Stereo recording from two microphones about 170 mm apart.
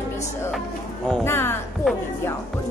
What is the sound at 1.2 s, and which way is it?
Speech, 15° left (ahead or behind).